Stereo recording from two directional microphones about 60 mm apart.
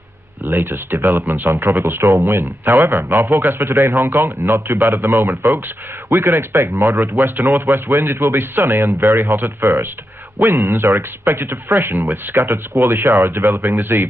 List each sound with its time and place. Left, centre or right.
0.5 s speech: right